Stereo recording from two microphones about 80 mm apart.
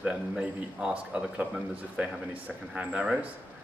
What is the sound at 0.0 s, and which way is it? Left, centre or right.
Speech, centre.